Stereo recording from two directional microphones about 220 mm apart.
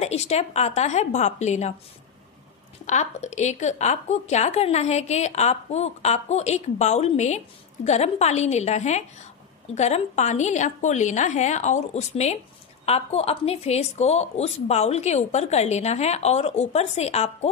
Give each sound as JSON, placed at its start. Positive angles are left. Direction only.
{"t": 0.0, "sound": "a woman's voice", "side_deg": 30}
{"t": 2.9, "sound": "a woman's voice", "side_deg": 30}